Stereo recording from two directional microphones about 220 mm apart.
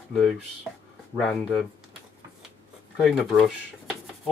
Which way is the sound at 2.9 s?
Centre (ahead or behind).